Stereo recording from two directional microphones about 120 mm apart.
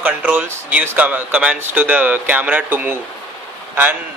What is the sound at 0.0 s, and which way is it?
Speech, 10° right (ahead or behind).